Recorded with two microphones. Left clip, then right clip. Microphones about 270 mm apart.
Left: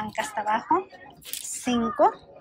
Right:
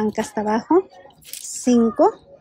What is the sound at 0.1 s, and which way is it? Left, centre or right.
Speech, right.